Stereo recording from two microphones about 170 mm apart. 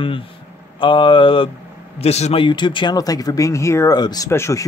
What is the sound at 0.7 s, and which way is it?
Speech, 30° left (ahead or behind).